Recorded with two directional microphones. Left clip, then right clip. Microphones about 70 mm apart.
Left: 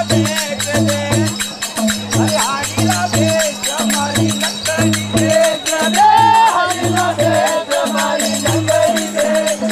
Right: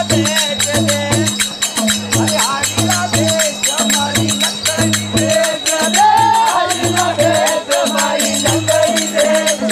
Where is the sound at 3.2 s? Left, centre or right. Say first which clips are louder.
Left 1 dB; centre.